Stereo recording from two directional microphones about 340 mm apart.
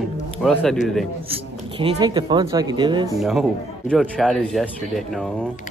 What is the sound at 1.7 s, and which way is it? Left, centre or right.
Speech, centre.